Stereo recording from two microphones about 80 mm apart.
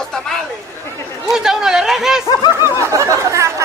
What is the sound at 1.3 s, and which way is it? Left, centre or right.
Speech, centre.